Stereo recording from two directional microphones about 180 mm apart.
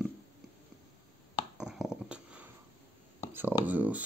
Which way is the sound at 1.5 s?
5° right (ahead or behind).